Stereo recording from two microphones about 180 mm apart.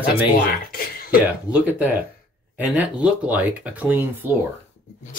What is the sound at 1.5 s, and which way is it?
Speech, 10° right (ahead or behind).